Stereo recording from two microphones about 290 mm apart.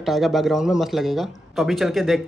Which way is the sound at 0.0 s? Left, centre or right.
Centre.